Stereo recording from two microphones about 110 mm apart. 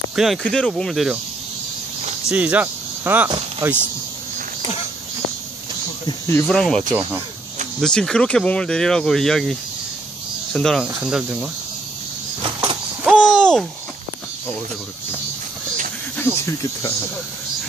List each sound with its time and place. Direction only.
0.1 s speech: centre (ahead or behind)
2.2 s speech: 10° right (ahead or behind)
6.2 s speech: 25° left (ahead or behind)
6.5 s speech: 5° left (ahead or behind)
7.8 s speech: 5° left (ahead or behind)
11.0 s speech: 10° right (ahead or behind)
13.0 s a sound: 10° right (ahead or behind)
13.3 s a sound: 5° left (ahead or behind)
16.2 s speech: 20° left (ahead or behind)